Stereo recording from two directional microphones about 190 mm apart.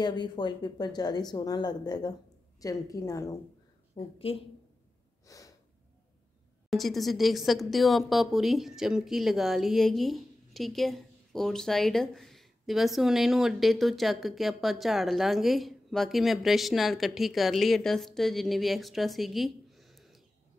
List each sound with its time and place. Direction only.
0.0 s a woman's voice: 20° left (ahead or behind)
3.9 s speech: 30° left (ahead or behind)
5.2 s gasp: 15° left (ahead or behind)
6.7 s a woman's voice: centre (ahead or behind)